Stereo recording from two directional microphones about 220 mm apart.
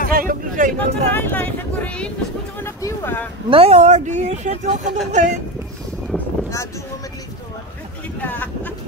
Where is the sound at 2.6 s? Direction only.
10° left (ahead or behind).